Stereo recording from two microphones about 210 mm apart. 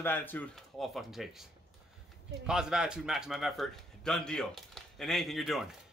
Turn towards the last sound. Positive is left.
turn(degrees=0)  # may be behind; listen again after turning